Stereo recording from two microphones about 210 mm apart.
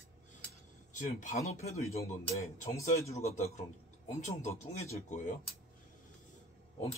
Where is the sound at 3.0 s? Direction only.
30° left (ahead or behind).